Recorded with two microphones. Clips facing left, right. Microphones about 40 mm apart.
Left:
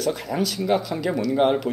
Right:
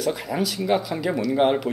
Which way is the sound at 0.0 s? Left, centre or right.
Centre.